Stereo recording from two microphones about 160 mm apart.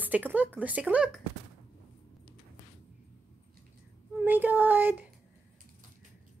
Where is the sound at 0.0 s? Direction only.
10° right (ahead or behind).